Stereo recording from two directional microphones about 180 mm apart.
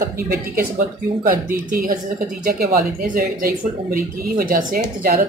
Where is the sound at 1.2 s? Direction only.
55° right (ahead or behind).